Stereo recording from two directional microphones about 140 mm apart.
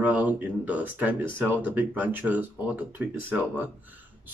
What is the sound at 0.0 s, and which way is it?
Speech, 10° right (ahead or behind).